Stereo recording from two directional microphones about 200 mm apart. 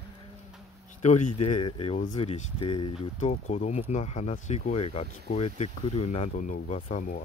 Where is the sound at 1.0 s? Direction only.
35° left (ahead or behind).